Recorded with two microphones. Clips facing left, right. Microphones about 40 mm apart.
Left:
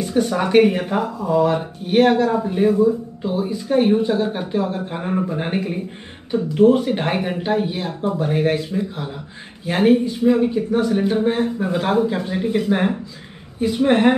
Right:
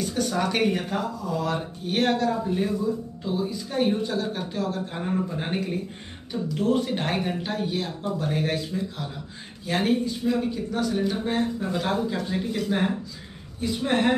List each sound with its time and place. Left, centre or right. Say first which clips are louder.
0.0 s speech: left 6 dB; left